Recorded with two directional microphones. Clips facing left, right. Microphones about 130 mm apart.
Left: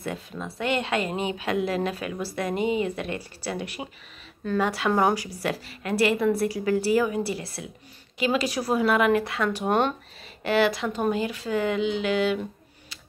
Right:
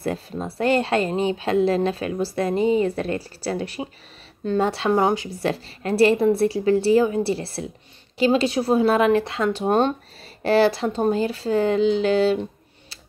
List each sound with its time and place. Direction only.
0.0 s a woman's voice: 35° right (ahead or behind)